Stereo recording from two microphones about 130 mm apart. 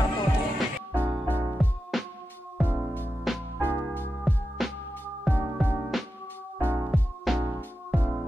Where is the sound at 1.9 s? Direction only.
Centre (ahead or behind).